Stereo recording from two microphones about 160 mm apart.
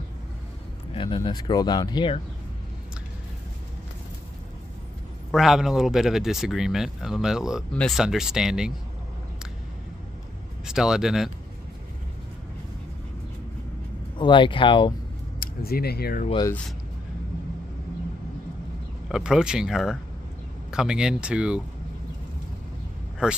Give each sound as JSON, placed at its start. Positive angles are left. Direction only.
{"t": 0.9, "sound": "speech", "side_deg": 30}
{"t": 5.3, "sound": "speech", "side_deg": 0}
{"t": 10.6, "sound": "speech", "side_deg": -5}
{"t": 14.1, "sound": "speech", "side_deg": 30}
{"t": 15.4, "sound": "speech", "side_deg": 70}
{"t": 19.0, "sound": "speech", "side_deg": -5}
{"t": 23.2, "sound": "speech", "side_deg": -5}